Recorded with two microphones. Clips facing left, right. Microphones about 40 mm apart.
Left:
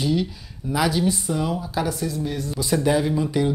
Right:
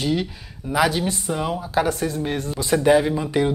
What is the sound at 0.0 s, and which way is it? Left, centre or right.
Speech, right.